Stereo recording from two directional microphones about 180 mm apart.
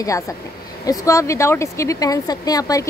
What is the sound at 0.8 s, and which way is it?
Speech, 20° left (ahead or behind).